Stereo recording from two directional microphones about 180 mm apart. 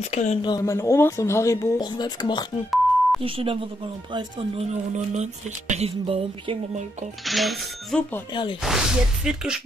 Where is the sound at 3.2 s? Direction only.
30° right (ahead or behind).